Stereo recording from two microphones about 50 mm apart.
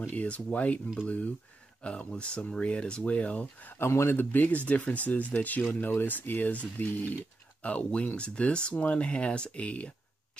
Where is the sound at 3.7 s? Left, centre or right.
Left.